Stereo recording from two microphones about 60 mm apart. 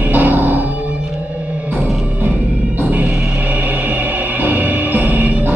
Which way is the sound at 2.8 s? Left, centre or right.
Right.